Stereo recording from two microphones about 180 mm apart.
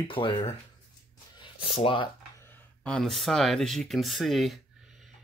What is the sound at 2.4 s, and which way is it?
Speech, 5° left (ahead or behind).